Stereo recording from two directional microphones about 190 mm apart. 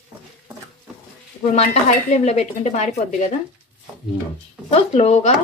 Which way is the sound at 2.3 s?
35° left (ahead or behind).